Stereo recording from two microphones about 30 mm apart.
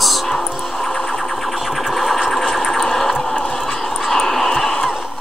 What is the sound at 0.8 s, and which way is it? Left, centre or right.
Music, centre.